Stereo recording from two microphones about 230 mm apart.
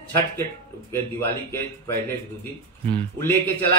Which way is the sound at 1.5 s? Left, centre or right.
Centre.